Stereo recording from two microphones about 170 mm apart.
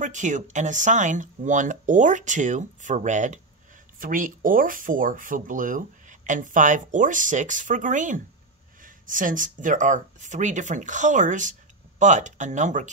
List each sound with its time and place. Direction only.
0.0 s speech: 45° right (ahead or behind)